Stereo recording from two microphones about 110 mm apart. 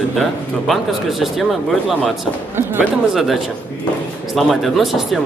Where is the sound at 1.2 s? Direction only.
Centre (ahead or behind).